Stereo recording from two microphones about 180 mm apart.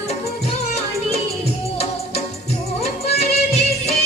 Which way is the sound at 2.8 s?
35° left (ahead or behind).